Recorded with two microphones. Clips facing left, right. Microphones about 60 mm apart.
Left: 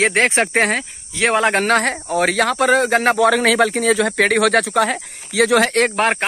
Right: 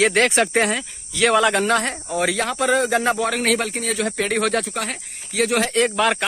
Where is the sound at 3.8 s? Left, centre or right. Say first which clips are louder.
Left 7 dB; left.